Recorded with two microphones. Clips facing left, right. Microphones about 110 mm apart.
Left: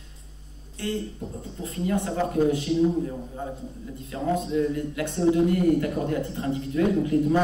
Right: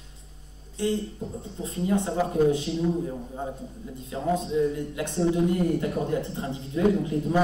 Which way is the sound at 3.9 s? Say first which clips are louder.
Even; 20° right (ahead or behind).